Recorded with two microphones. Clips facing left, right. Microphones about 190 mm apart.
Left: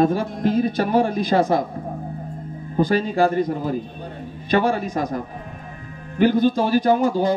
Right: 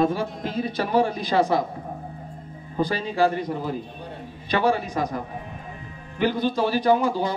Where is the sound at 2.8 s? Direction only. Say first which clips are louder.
Left 4 dB; 50° left (ahead or behind).